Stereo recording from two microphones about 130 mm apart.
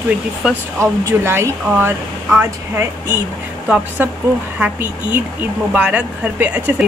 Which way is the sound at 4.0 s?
10° right (ahead or behind).